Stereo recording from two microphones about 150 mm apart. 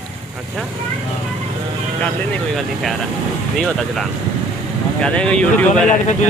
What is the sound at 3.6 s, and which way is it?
Speech, centre (ahead or behind).